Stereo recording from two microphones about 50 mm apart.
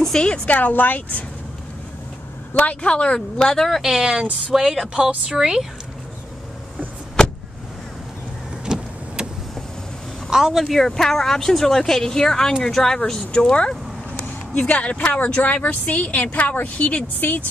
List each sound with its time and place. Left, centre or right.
0.1 s speech: centre
0.5 s speech: left
2.5 s speech: left
2.9 s speech: centre
3.8 s speech: centre
4.1 s speech: centre
8.6 s vehicle: centre
10.3 s speech: centre
10.6 s speech: centre; by 17.5 s left